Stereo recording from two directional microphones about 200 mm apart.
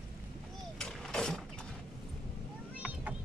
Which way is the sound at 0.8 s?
Centre (ahead or behind).